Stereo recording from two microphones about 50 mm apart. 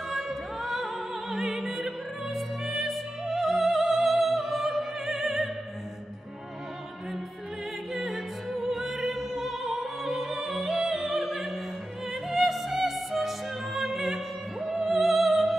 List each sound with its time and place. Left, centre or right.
0.1 s opera: centre
7.9 s opera: centre
12.1 s music: centre